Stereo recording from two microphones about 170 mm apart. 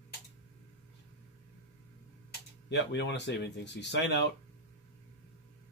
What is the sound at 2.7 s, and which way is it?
Speech, 90° left.